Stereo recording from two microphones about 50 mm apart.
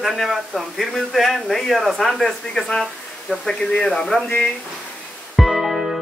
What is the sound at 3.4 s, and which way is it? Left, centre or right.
Speech, centre.